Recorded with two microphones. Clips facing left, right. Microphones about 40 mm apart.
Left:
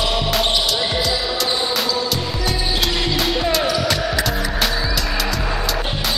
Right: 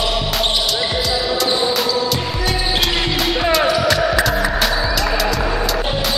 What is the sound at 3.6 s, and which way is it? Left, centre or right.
Music, right.